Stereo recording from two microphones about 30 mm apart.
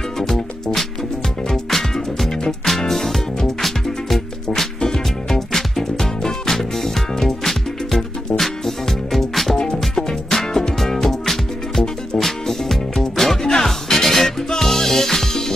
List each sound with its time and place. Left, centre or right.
1.5 s music: centre
4.8 s music: centre
5.5 s music: centre
5.9 s music: centre